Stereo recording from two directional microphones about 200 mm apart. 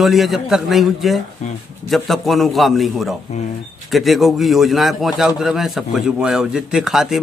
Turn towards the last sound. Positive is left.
turn(degrees=-5)  # may be behind; listen again after turning